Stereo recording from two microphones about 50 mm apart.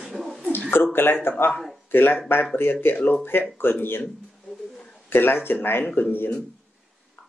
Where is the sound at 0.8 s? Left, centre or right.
Left.